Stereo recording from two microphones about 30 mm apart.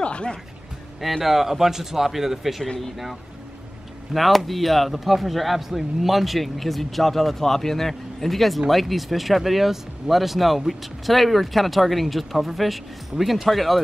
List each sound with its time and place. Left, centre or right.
0.0 s music: left
1.2 s speech: centre
4.1 s speech: centre